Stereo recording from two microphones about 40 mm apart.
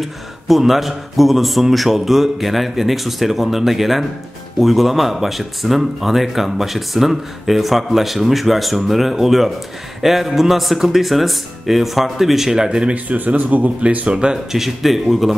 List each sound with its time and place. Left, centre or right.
0.0 s speech: centre
12.6 s speech: centre
12.9 s speech: right
14.0 s speech: right
14.5 s speech: centre